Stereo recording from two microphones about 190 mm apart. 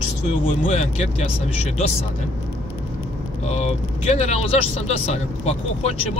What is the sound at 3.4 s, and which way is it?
Speech, 35° left (ahead or behind).